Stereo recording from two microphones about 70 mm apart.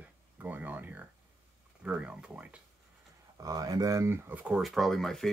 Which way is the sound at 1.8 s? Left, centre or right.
Centre.